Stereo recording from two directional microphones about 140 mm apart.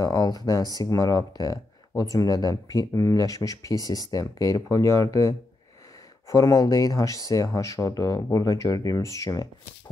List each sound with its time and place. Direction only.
0.0 s speech: 25° left (ahead or behind)